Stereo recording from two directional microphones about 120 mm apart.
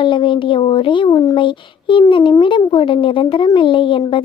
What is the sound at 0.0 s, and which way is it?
A child's voice, 45° left (ahead or behind).